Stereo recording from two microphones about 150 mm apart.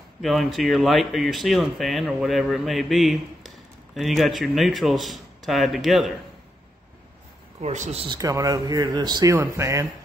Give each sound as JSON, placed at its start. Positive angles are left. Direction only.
{"t": 0.2, "sound": "speech", "side_deg": 0}
{"t": 7.6, "sound": "speech", "side_deg": -50}
{"t": 8.2, "sound": "speech", "side_deg": -25}